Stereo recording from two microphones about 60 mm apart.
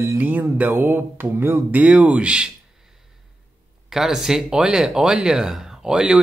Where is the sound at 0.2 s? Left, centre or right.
Right.